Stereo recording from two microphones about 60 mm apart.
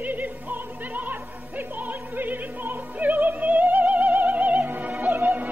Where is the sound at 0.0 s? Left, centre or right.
Right.